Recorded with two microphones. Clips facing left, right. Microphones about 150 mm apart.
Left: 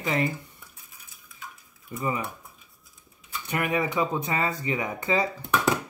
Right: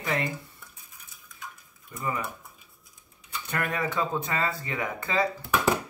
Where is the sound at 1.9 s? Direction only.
10° left (ahead or behind).